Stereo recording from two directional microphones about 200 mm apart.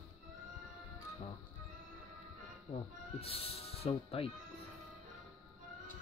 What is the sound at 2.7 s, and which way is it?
Speech, 30° left (ahead or behind).